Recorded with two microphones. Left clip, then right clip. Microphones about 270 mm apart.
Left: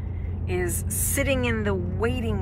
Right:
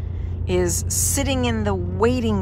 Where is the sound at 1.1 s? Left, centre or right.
Centre.